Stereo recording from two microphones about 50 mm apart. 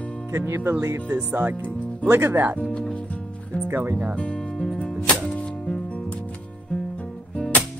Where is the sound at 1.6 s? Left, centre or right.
Left.